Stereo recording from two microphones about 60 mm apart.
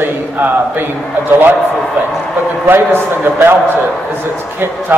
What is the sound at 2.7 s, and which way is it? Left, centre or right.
Speech, right.